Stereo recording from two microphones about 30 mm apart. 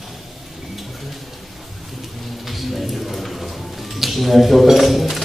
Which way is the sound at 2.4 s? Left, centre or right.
Centre.